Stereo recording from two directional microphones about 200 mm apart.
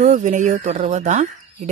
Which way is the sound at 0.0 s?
35° right (ahead or behind).